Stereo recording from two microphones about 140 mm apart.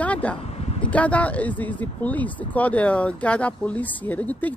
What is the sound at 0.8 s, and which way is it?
Speech, 10° left (ahead or behind).